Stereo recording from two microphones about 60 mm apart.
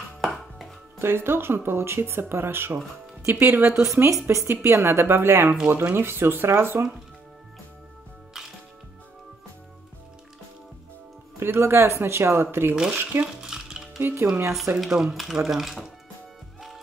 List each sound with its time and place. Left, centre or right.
0.2 s music: centre
0.9 s speech: right
3.8 s speech: right
8.3 s music: centre
11.3 s speech: right
13.2 s stir: centre
14.0 s speech: right
14.8 s a sound: centre